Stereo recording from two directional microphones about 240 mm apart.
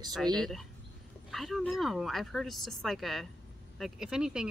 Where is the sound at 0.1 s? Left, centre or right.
Centre.